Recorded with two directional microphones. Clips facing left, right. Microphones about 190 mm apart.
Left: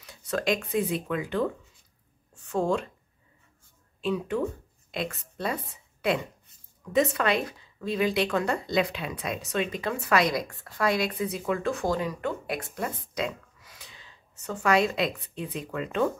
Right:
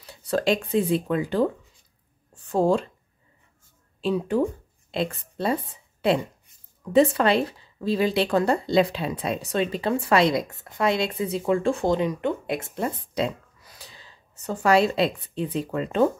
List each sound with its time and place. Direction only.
0.0 s speech: 30° right (ahead or behind)
4.0 s a woman's voice: 35° right (ahead or behind)